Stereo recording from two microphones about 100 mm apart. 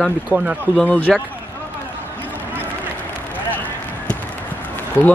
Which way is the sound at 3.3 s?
15° left (ahead or behind).